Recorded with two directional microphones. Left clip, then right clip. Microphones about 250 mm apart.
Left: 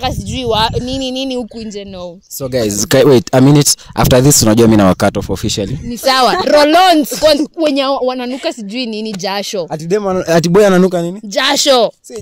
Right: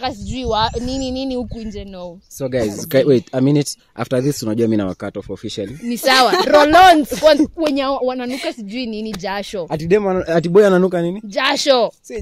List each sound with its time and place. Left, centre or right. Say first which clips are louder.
0.0 s speech: left 5 dB; left
2.4 s speech: left 5 dB; left
9.7 s speech: right 3 dB; left
10.1 s speech: left 6 dB; left